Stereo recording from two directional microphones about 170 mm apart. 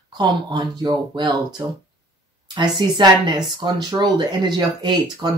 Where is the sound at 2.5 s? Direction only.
25° right (ahead or behind).